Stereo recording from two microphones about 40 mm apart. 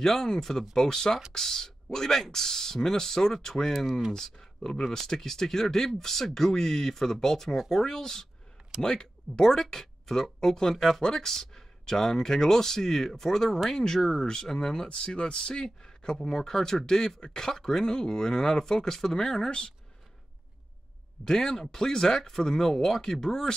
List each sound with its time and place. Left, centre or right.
0.0 s speech: centre
21.3 s speech: centre